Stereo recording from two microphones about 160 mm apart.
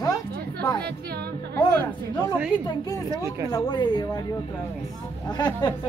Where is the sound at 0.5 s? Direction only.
10° left (ahead or behind).